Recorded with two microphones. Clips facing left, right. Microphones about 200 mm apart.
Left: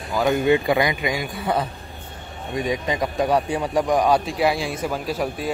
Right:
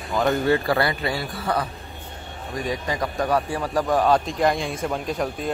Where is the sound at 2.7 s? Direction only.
20° left (ahead or behind).